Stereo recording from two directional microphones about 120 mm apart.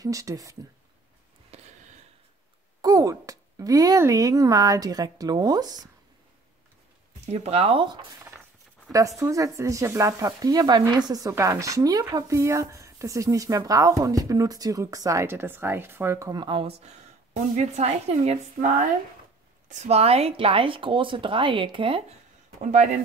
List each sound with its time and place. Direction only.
0.0 s speech: 30° right (ahead or behind)
1.5 s a sound: 60° right (ahead or behind)
2.8 s speech: 30° right (ahead or behind)
7.2 s speech: 60° right (ahead or behind)
8.9 s speech: 30° right (ahead or behind)
16.3 s speech: 40° right (ahead or behind)
17.6 s a woman's voice: 70° right (ahead or behind); by 18.9 s 90° right
19.7 s speech: 70° right (ahead or behind); by 22.0 s 45° right (ahead or behind)
22.6 s a man's voice: 75° right (ahead or behind)